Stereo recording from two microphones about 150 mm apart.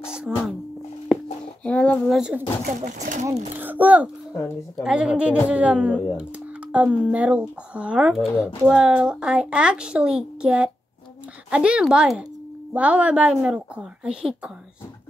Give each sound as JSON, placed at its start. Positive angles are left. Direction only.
{"t": 0.0, "sound": "a sound", "side_deg": -5}
{"t": 1.6, "sound": "child singing", "side_deg": 5}
{"t": 2.1, "sound": "speech", "side_deg": -5}
{"t": 2.8, "sound": "speech", "side_deg": -55}
{"t": 3.5, "sound": "a child's voice", "side_deg": -10}